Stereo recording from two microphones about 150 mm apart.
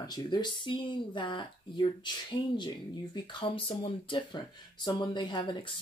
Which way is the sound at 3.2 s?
35° left (ahead or behind).